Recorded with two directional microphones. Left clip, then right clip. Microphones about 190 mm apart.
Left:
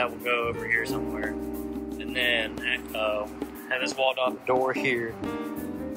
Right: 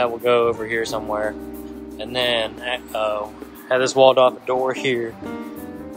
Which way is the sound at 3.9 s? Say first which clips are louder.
Right 14 dB; 50° right (ahead or behind).